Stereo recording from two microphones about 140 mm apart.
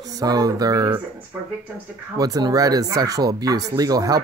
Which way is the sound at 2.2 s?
25° right (ahead or behind).